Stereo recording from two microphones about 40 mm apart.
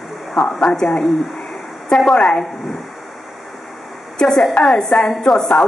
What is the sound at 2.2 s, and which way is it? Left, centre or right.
Speech, centre.